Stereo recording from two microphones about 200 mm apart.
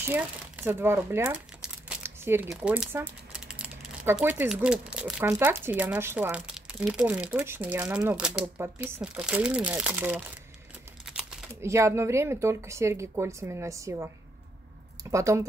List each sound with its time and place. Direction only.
0.0 s speech: 10° right (ahead or behind)
15.0 s speech: 15° right (ahead or behind)